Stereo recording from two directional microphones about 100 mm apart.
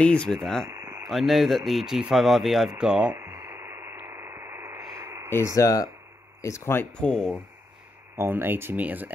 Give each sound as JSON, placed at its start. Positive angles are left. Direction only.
{"t": 0.0, "sound": "speech", "side_deg": 10}
{"t": 0.7, "sound": "a sound", "side_deg": -25}
{"t": 1.0, "sound": "speech", "side_deg": 0}
{"t": 3.2, "sound": "radio", "side_deg": -25}
{"t": 4.7, "sound": "a sound", "side_deg": -30}
{"t": 5.6, "sound": "speech", "side_deg": 40}
{"t": 7.0, "sound": "speech", "side_deg": 5}
{"t": 8.2, "sound": "speech", "side_deg": -20}